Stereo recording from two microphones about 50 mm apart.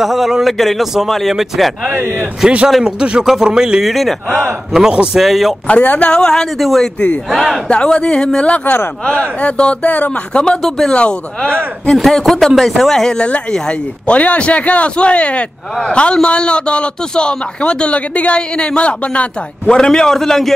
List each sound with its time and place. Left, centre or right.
0.0 s a man's voice: centre
3.8 s a man's voice: centre
4.7 s speech: centre
5.2 s a man's voice: centre
5.7 s speech: left
6.6 s a man's voice: centre
7.6 s speech: left
9.8 s speech: left
10.3 s speech: centre
11.9 s a man's voice: centre